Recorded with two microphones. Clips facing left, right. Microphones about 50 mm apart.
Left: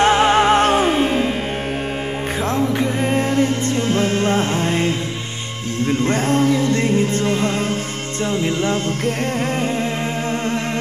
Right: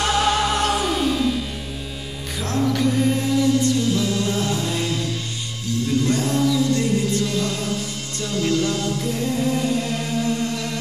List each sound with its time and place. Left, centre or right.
0.0 s music: left
2.4 s music: left
9.0 s music: left